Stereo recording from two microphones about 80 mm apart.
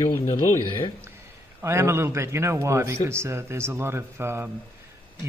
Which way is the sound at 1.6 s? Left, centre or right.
Right.